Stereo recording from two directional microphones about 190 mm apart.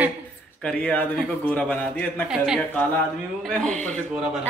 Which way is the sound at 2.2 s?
Centre (ahead or behind).